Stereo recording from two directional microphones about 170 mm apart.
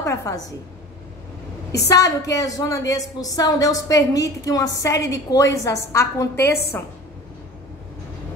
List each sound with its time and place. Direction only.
0.0 s a woman's voice: 15° left (ahead or behind)
1.9 s a woman's voice: 20° left (ahead or behind)